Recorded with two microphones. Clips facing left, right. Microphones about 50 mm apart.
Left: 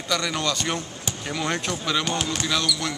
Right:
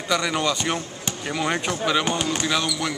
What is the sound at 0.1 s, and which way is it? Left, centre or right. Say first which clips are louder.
Speech: right 3 dB; centre.